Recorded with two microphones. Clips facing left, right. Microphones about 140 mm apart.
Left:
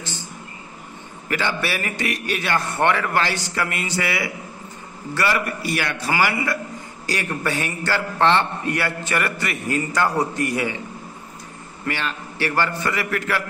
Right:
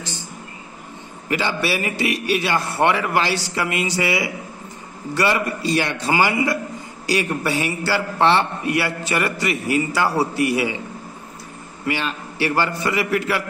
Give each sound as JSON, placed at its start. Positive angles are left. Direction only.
{"t": 1.3, "sound": "a man's voice", "side_deg": -15}
{"t": 11.8, "sound": "a man's voice", "side_deg": -15}